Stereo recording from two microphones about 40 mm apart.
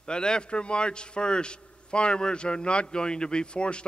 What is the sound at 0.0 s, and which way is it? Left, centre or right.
A man's voice, centre.